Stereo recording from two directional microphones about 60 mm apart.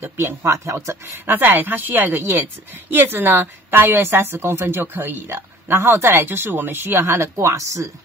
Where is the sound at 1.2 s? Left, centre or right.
Right.